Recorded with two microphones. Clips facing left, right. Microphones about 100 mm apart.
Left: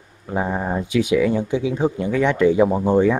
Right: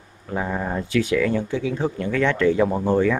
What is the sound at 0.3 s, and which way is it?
A man's voice, 20° left (ahead or behind).